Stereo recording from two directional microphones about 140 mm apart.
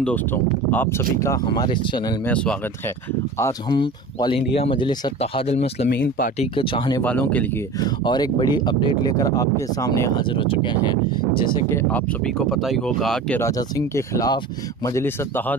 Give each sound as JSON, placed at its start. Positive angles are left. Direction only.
{"t": 0.0, "sound": "speech", "side_deg": 10}
{"t": 2.2, "sound": "speech", "side_deg": 10}
{"t": 3.7, "sound": "speech", "side_deg": 35}
{"t": 5.2, "sound": "speech", "side_deg": 45}
{"t": 7.0, "sound": "speech", "side_deg": 10}
{"t": 7.8, "sound": "speech", "side_deg": 30}
{"t": 10.2, "sound": "speech", "side_deg": 40}
{"t": 11.7, "sound": "speech", "side_deg": 10}
{"t": 13.4, "sound": "speech", "side_deg": 25}